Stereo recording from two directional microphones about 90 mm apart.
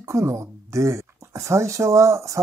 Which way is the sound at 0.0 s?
30° right (ahead or behind).